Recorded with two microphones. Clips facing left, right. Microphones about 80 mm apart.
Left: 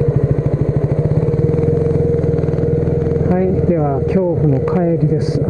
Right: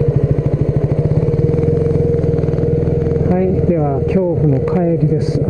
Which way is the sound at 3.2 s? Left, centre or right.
Left.